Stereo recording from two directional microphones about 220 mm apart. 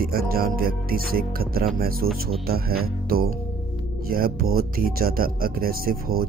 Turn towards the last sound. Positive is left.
turn(degrees=-40)  # may be behind; listen again after turning